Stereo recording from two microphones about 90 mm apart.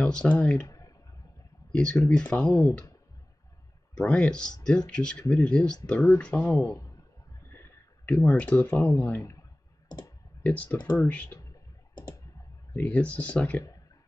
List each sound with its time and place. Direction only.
0.0 s speech: 10° left (ahead or behind)
0.7 s clicking: 40° left (ahead or behind)
1.7 s speech: 10° left (ahead or behind)
2.5 s speech: 40° left (ahead or behind)
4.0 s speech: 10° left (ahead or behind)
6.5 s speech: 30° left (ahead or behind)
7.5 s a sound: 20° left (ahead or behind)
8.3 s speech: 15° left (ahead or behind)
8.8 s speech: 25° left (ahead or behind)
9.8 s clicking: 50° left (ahead or behind)
10.4 s speech: 15° left (ahead or behind)
12.7 s speech: 20° left (ahead or behind)